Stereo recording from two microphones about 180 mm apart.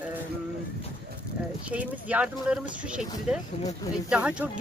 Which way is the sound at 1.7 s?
5° right (ahead or behind).